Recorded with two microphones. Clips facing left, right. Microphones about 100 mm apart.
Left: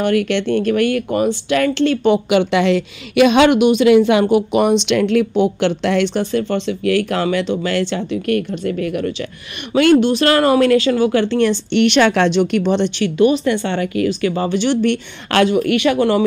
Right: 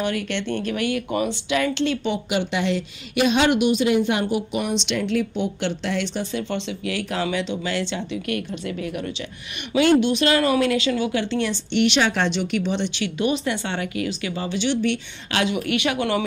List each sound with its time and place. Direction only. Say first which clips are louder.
0.0 s speech: left 9 dB; 60° left (ahead or behind)
9.8 s speech: left 5 dB; 50° left (ahead or behind)